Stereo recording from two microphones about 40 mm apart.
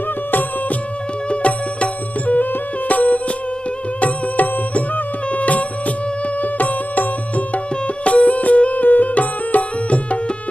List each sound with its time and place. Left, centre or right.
0.3 s music: left
1.3 s music: left